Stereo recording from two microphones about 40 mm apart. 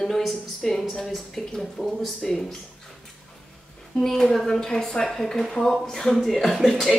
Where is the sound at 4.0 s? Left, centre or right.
Centre.